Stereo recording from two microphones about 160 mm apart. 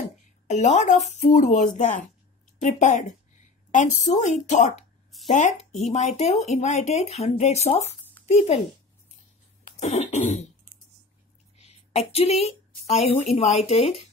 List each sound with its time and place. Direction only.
0.5 s speech: 45° left (ahead or behind)
9.7 s throat clearing: 45° left (ahead or behind)
11.5 s a woman's voice: 40° left (ahead or behind)